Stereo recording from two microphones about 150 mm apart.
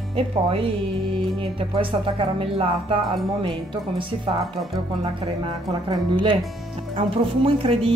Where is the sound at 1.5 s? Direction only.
35° right (ahead or behind).